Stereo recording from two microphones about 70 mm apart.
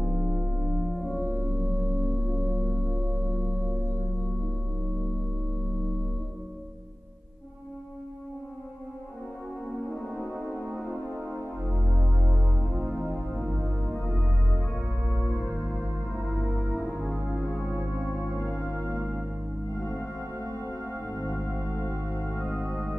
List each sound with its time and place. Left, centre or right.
0.0 s music: centre
1.2 s music: right
10.9 s music: right
11.7 s music: left
12.7 s music: right
14.5 s music: left
15.0 s music: right
16.4 s music: right
21.2 s music: left